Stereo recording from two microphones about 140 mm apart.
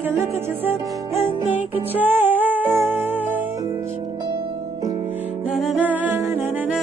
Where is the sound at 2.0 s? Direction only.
10° right (ahead or behind).